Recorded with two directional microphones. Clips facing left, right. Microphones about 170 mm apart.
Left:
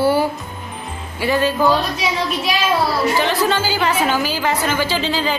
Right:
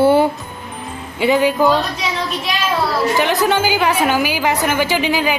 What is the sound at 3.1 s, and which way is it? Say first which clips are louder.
A woman's voice: right 2 dB; 15° right (ahead or behind).